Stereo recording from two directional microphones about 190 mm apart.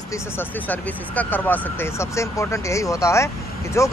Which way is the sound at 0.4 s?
10° left (ahead or behind).